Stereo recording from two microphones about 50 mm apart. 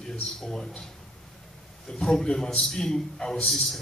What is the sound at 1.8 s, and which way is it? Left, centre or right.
A man's voice, centre.